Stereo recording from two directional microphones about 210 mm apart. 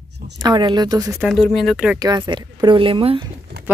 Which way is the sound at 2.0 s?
20° right (ahead or behind).